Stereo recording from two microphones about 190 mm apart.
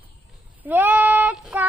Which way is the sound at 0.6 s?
10° right (ahead or behind).